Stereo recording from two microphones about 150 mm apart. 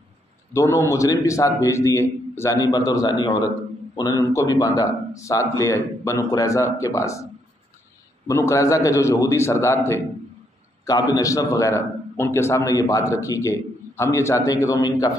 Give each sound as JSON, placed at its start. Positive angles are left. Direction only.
{"t": 0.5, "sound": "a man's voice", "side_deg": 20}
{"t": 8.3, "sound": "a man's voice", "side_deg": 20}